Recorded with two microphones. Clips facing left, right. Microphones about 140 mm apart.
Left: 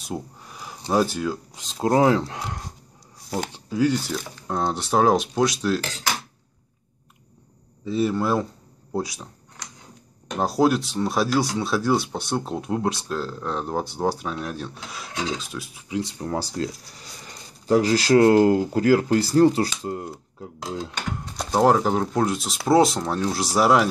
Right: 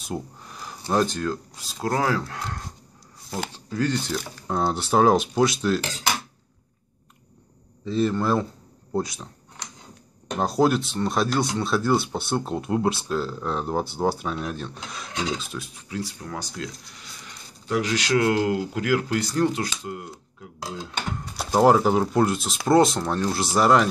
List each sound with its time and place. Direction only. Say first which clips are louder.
0.0 s a sound: even; 5° left (ahead or behind)
1.6 s speech: left 7 dB; 20° left (ahead or behind)
3.5 s speech: left 4 dB; 10° left (ahead or behind)
7.8 s speech: even; 5° left (ahead or behind)
10.4 s speech: left 1 dB; centre (ahead or behind)
15.9 s speech: left 6 dB; 20° left (ahead or behind)
21.4 s speech: right 1 dB; 5° right (ahead or behind)